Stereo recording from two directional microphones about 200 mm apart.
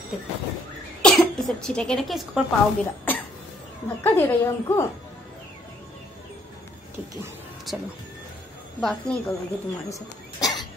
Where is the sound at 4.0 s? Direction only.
10° left (ahead or behind).